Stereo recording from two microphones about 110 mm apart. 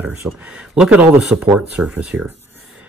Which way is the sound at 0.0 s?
15° right (ahead or behind).